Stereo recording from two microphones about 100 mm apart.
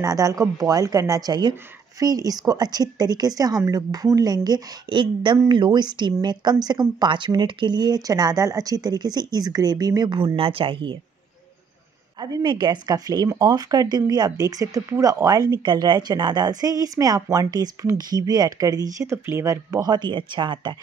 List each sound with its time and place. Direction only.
0.0 s speech: 35° right (ahead or behind); by 11.0 s 60° right (ahead or behind)
12.2 s speech: 45° right (ahead or behind)
15.5 s speech: 50° right (ahead or behind)